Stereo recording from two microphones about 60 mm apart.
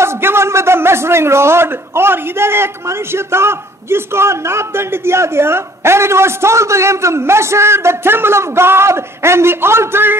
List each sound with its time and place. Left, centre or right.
0.0 s a man's voice: right